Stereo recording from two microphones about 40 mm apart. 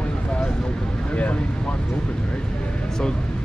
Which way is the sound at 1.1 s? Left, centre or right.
Left.